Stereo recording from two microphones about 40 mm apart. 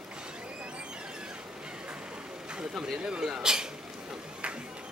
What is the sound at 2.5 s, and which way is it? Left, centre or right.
Vehicle, centre.